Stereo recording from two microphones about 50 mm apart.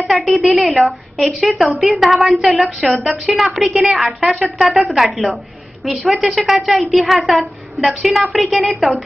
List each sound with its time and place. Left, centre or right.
0.0 s a woman's voice: centre